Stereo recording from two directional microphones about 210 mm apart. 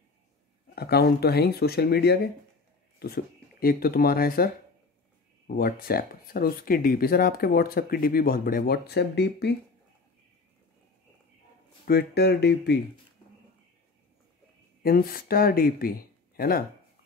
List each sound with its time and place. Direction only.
0.7 s speech: 50° left (ahead or behind)
5.5 s speech: 45° left (ahead or behind)
11.8 s speech: 50° left (ahead or behind)
14.8 s speech: 45° left (ahead or behind)